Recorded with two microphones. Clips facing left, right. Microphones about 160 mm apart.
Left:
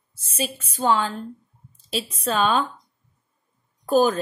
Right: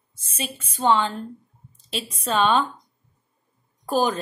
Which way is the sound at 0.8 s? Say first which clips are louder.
Right 1 dB; centre (ahead or behind).